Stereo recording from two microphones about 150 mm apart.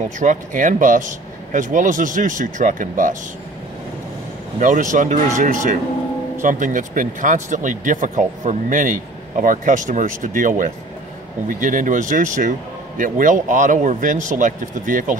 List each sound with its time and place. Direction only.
0.2 s speech: 60° right (ahead or behind)
4.6 s speech: 60° right (ahead or behind)